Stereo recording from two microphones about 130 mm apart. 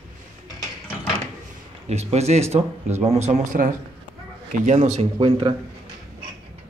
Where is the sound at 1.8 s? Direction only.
55° right (ahead or behind).